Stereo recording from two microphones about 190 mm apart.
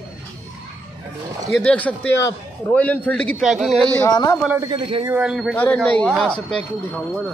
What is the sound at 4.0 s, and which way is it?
Speech, 20° left (ahead or behind).